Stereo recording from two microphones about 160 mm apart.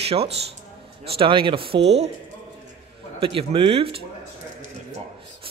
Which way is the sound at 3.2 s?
35° right (ahead or behind).